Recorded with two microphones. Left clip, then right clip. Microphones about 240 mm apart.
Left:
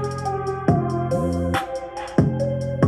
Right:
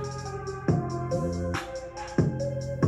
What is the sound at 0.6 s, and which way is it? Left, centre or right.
Music, left.